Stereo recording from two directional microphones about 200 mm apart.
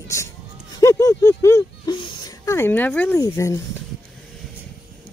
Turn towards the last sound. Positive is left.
turn(degrees=15)  # may be behind; listen again after turning